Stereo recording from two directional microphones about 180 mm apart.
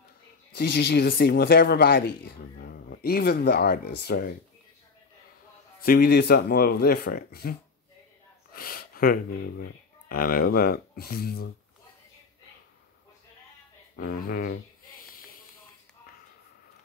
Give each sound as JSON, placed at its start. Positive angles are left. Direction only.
{"t": 0.5, "sound": "speech", "side_deg": 70}
{"t": 5.8, "sound": "speech", "side_deg": 55}
{"t": 8.5, "sound": "speech", "side_deg": 55}
{"t": 13.9, "sound": "a sound", "side_deg": 55}